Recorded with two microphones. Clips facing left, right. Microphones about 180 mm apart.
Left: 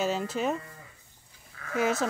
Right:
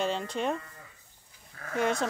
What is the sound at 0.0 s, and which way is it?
Speech, 5° left (ahead or behind).